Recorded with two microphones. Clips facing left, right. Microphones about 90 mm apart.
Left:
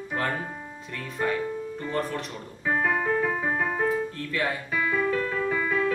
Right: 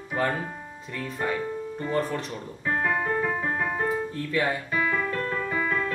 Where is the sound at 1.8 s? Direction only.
5° right (ahead or behind).